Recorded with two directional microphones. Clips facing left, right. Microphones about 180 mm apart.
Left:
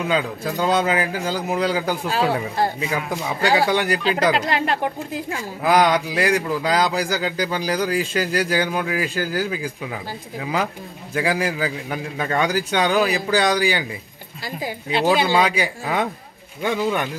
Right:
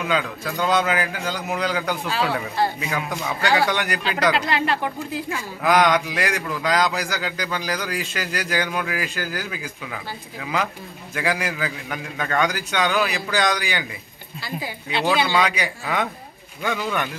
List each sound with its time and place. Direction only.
0.0 s speech: 30° left (ahead or behind)
3.6 s speech: 30° left (ahead or behind)